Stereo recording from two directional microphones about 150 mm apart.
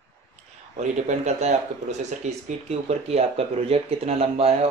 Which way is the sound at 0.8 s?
50° right (ahead or behind).